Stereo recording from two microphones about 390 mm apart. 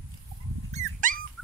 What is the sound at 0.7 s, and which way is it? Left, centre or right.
Dog, centre.